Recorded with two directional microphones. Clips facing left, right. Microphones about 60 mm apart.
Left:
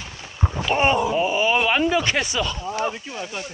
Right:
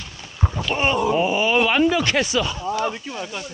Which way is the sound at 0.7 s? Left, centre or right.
Centre.